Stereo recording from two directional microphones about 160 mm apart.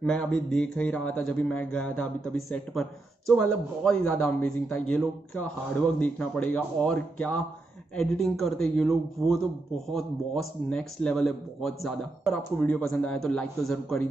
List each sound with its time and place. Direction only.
0.0 s speech: 5° left (ahead or behind)